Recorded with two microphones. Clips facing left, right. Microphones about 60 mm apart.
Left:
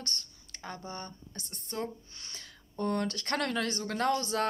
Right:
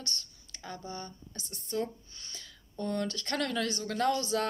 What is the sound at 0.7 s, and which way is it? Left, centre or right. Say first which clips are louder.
Speech: even; left.